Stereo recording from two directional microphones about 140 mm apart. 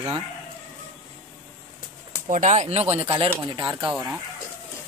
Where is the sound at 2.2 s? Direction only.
55° right (ahead or behind); by 3.8 s 35° right (ahead or behind).